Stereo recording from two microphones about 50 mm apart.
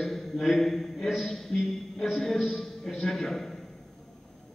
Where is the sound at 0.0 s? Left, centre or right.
Centre.